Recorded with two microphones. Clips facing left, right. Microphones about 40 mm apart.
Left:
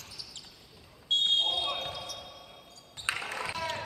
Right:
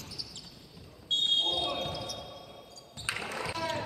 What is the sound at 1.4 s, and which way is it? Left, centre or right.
Basketball bounce, centre.